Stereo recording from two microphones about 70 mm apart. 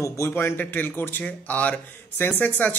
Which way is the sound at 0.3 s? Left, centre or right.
Left.